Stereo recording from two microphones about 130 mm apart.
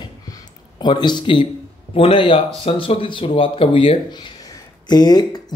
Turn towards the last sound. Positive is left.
turn(degrees=30)  # may be behind; listen again after turning